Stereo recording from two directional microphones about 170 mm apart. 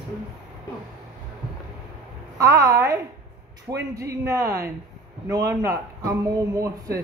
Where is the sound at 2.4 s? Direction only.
20° right (ahead or behind).